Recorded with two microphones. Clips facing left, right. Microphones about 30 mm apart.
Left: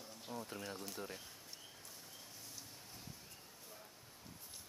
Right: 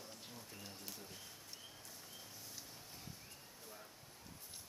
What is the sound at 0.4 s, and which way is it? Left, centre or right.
Speech, left.